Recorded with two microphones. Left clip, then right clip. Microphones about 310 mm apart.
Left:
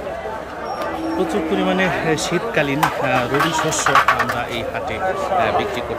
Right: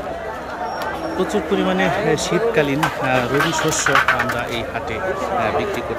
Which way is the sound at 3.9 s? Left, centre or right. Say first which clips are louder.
Left 2 dB; centre.